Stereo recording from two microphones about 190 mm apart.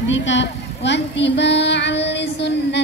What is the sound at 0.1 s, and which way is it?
A woman's voice, 75° left (ahead or behind).